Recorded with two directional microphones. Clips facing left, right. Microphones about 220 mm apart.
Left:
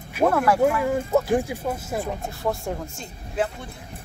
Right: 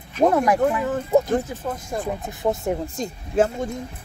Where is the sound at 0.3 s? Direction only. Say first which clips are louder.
Even; 20° right (ahead or behind).